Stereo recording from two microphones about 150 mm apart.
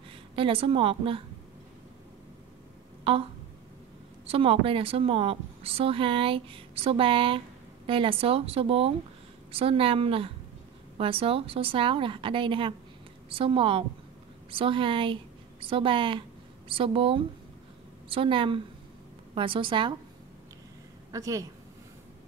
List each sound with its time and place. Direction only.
0.4 s a woman's voice: 35° right (ahead or behind)
3.0 s a sound: 40° right (ahead or behind)
4.3 s a woman's voice: 40° right (ahead or behind)
21.1 s a woman's voice: 20° right (ahead or behind)